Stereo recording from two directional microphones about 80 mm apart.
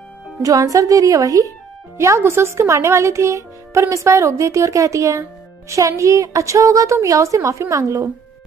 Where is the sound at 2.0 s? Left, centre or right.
Right.